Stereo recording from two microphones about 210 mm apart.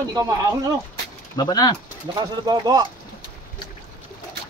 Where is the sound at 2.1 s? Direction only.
20° right (ahead or behind).